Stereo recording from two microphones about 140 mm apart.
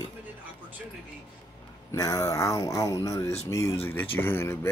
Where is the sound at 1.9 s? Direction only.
25° left (ahead or behind).